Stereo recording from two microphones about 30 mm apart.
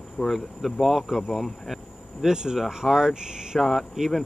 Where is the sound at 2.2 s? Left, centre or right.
Right.